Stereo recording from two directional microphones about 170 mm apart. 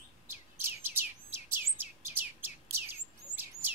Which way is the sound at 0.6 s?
15° right (ahead or behind).